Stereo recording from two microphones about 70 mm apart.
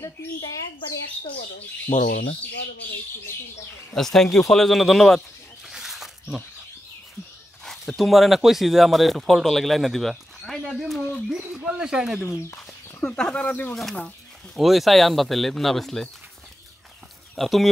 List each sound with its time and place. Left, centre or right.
1.9 s speech: left
3.9 s speech: centre
5.7 s wild animals: centre
7.6 s speech: centre
11.0 s speech: centre
11.4 s speech: centre
12.5 s speech: centre
14.5 s speech: centre
17.4 s speech: centre